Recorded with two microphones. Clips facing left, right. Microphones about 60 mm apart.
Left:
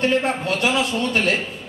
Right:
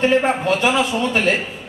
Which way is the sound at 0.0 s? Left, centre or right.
Centre.